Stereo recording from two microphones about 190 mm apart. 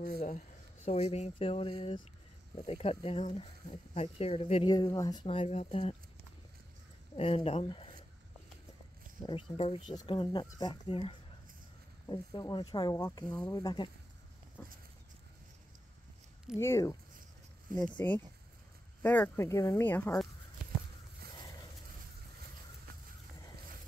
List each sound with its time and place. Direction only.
0.0 s speech: 45° left (ahead or behind)
7.2 s speech: 30° left (ahead or behind)
9.2 s speech: 25° left (ahead or behind)
16.5 s speech: 15° left (ahead or behind)